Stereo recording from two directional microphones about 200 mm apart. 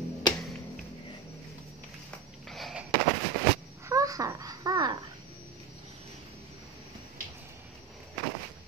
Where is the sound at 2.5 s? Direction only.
Centre (ahead or behind).